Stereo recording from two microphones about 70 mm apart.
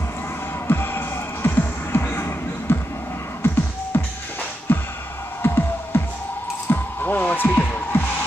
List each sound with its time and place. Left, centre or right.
0.7 s music: left